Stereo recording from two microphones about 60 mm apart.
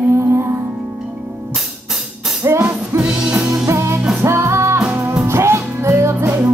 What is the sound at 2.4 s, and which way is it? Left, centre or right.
Music, right.